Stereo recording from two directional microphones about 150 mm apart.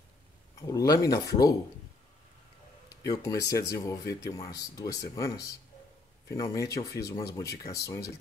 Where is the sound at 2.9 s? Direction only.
20° left (ahead or behind).